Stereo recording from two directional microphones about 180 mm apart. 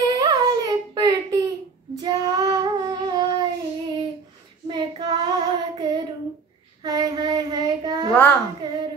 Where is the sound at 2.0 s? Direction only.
25° right (ahead or behind).